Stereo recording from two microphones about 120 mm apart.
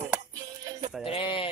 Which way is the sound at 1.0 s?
50° left (ahead or behind).